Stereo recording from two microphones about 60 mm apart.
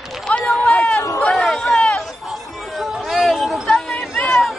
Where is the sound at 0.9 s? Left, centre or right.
Left.